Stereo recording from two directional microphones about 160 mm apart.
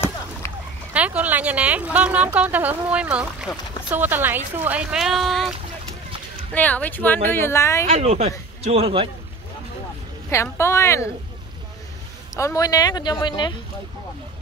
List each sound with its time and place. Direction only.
0.4 s a sound: 15° left (ahead or behind)
0.9 s a woman's voice: 10° right (ahead or behind)
6.5 s speech: 10° left (ahead or behind)
7.9 s speech: 40° right (ahead or behind)
10.3 s speech: 15° left (ahead or behind)
12.4 s speech: 20° left (ahead or behind)